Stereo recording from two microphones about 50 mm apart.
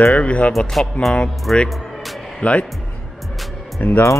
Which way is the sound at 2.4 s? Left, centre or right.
Left.